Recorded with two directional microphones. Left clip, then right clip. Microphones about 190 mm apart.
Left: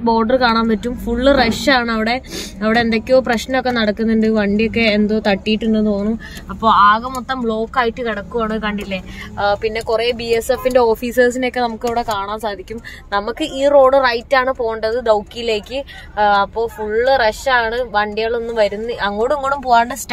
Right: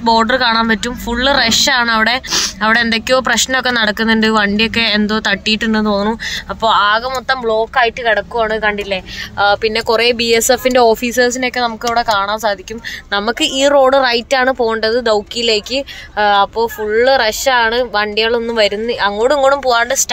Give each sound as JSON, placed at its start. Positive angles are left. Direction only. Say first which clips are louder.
{"t": 0.0, "sound": "speech", "louder": "right 2 dB", "side_deg": 0}
{"t": 5.6, "sound": "speech", "louder": "right 3 dB", "side_deg": -15}
{"t": 6.6, "sound": "speech", "louder": "left 1 dB", "side_deg": -5}